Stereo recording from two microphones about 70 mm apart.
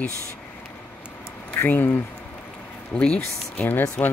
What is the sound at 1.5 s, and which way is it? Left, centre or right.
Speech, left.